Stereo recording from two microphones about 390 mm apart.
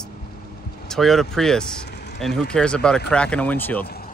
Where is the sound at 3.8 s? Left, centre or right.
Left.